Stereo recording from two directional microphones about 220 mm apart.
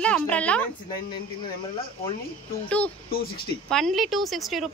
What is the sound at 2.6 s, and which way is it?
Speech, 5° left (ahead or behind).